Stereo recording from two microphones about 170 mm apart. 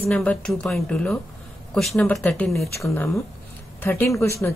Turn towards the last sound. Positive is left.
turn(degrees=15)  # may be behind; listen again after turning